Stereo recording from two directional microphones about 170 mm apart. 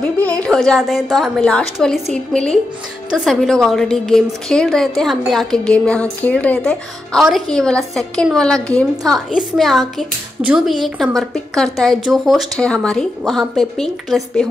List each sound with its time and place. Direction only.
0.2 s a woman's voice: 5° left (ahead or behind)